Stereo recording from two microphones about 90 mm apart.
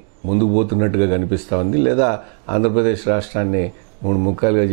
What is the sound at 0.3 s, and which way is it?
Speech, 20° right (ahead or behind).